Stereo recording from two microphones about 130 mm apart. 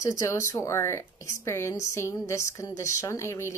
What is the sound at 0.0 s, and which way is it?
A woman's voice, 25° left (ahead or behind).